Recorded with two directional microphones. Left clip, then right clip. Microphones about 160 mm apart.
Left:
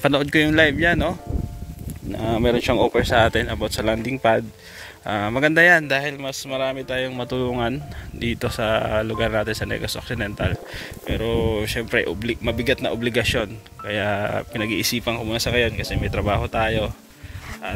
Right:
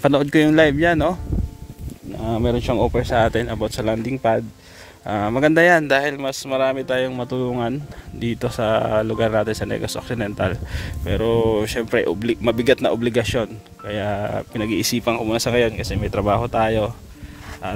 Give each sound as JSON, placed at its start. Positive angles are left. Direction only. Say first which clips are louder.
{"t": 0.0, "sound": "speech", "louder": "right 2 dB", "side_deg": -30}
{"t": 2.3, "sound": "speech", "louder": "left 1 dB", "side_deg": -5}
{"t": 5.9, "sound": "speech", "louder": "right 4 dB", "side_deg": -55}
{"t": 7.2, "sound": "speech", "louder": "even", "side_deg": -20}
{"t": 11.1, "sound": "speech", "louder": "right 5 dB", "side_deg": -50}
{"t": 13.0, "sound": "speech", "louder": "right 1 dB", "side_deg": -30}
{"t": 14.7, "sound": "speech", "louder": "right 4 dB", "side_deg": -40}